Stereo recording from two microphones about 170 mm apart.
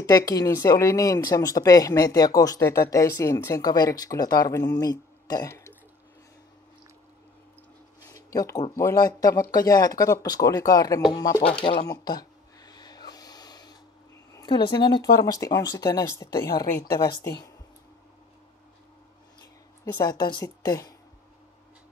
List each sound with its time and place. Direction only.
0.0 s speech: 20° left (ahead or behind)
5.3 s burping: 20° left (ahead or behind)
8.1 s speech: 20° left (ahead or behind)
11.4 s a sound: 30° left (ahead or behind)
14.3 s speech: 25° left (ahead or behind)
19.8 s speech: 20° left (ahead or behind)